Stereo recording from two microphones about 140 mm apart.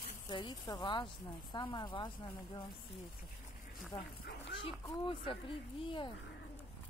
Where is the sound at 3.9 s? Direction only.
45° left (ahead or behind).